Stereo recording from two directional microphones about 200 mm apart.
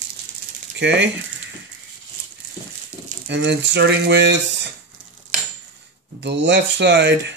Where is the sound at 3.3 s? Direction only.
60° right (ahead or behind).